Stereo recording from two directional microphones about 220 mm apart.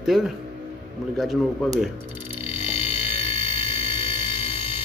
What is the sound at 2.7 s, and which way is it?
Music, 25° left (ahead or behind).